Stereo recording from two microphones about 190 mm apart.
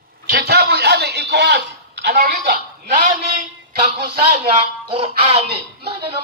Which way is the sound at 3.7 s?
35° right (ahead or behind).